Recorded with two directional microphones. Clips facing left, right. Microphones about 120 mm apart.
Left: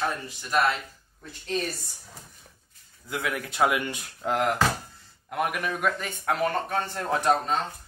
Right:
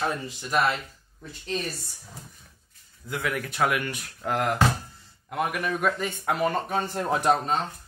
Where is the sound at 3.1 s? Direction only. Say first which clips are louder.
Right 1 dB; 15° left (ahead or behind).